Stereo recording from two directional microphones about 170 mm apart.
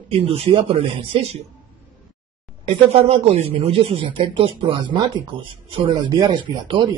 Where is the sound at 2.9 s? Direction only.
35° right (ahead or behind).